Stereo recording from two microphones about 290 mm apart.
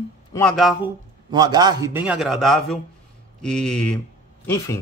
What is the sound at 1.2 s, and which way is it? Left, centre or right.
A man's voice, centre.